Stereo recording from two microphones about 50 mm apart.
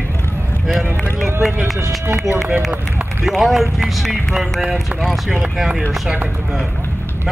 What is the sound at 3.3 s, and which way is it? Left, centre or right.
Speech, centre.